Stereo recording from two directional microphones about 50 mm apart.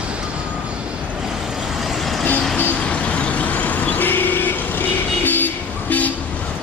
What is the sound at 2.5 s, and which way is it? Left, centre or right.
Vehicle, left.